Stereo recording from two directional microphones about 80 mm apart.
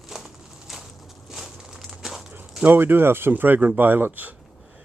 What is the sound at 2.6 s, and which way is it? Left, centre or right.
Speech, right.